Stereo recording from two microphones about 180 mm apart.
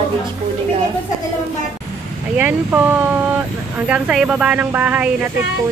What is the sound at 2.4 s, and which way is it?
A woman's voice, 10° right (ahead or behind).